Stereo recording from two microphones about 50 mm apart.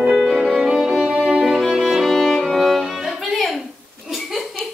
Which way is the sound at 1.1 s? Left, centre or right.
Centre.